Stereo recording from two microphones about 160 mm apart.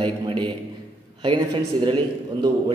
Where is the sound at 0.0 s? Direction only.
30° right (ahead or behind).